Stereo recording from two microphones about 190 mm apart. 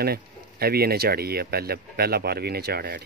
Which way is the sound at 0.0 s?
55° right (ahead or behind).